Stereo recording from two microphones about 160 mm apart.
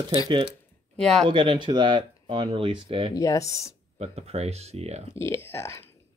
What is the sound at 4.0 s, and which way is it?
Speech, 40° right (ahead or behind).